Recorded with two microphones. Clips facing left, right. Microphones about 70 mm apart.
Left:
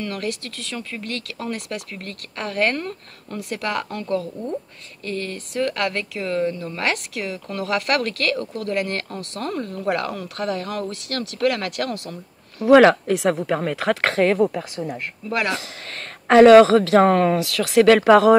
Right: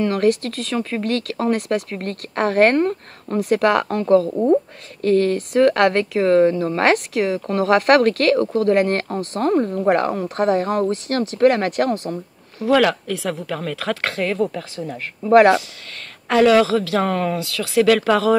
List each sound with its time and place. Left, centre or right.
0.0 s speech: right
12.6 s speech: left
14.4 s speech: centre
15.2 s speech: right
16.4 s speech: left
18.0 s speech: left